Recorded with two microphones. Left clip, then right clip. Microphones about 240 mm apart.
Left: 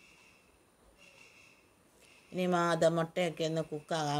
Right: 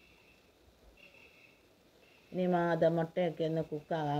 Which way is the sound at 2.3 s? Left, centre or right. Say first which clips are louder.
Left 1 dB; centre.